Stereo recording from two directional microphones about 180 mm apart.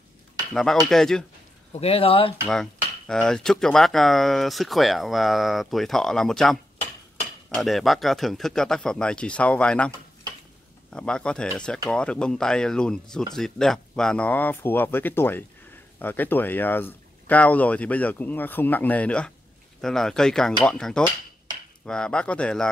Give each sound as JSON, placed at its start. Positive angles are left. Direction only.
{"t": 0.5, "sound": "speech", "side_deg": 0}
{"t": 1.7, "sound": "speech", "side_deg": 35}
{"t": 2.4, "sound": "speech", "side_deg": 5}
{"t": 10.9, "sound": "speech", "side_deg": 5}